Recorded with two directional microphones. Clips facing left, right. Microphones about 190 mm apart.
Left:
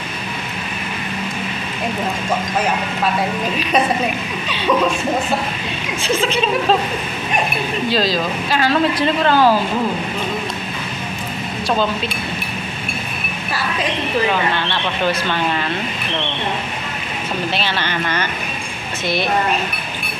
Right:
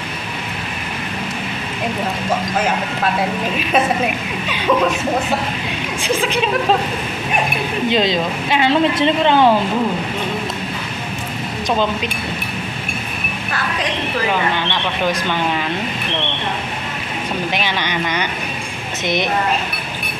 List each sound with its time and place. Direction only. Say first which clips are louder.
3.7 s speech: right 1 dB; 5° right (ahead or behind)
6.0 s speech: even; 15° right (ahead or behind)
7.9 s speech: right 1 dB; 20° right (ahead or behind)
14.3 s speech: even; 15° right (ahead or behind)
17.5 s speech: even; 15° right (ahead or behind)